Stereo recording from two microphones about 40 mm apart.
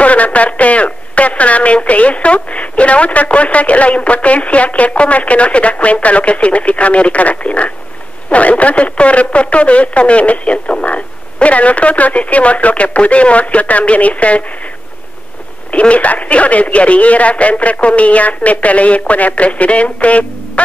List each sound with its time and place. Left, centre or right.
0.0 s speech: left
15.7 s speech: left